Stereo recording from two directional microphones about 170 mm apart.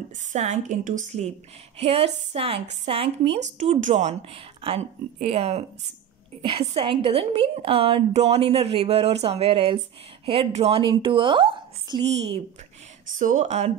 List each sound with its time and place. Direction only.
0.3 s a woman's voice: 45° right (ahead or behind)
13.1 s a woman's voice: 50° right (ahead or behind)